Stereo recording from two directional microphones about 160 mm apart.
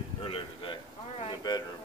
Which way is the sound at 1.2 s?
25° left (ahead or behind).